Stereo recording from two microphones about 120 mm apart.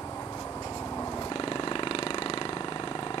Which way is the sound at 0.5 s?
20° left (ahead or behind).